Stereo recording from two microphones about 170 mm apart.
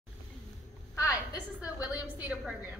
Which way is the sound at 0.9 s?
20° left (ahead or behind).